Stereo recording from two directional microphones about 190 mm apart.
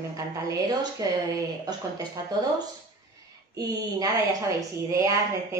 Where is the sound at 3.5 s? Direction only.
20° right (ahead or behind).